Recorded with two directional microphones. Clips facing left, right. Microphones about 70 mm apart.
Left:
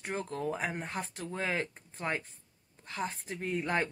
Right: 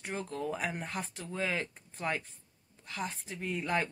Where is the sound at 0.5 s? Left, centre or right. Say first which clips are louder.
Left 1 dB; left.